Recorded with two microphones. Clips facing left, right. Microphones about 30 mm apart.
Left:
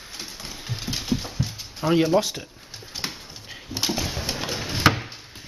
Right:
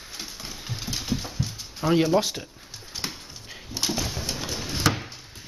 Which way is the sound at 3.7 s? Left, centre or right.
Centre.